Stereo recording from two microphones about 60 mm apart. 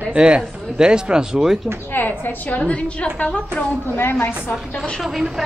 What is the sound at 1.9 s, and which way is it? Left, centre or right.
A woman's voice, left.